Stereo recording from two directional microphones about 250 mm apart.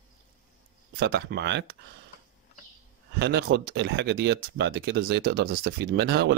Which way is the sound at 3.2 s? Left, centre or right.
Right.